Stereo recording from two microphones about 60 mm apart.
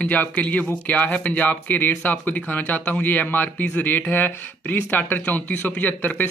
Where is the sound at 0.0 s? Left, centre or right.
Left.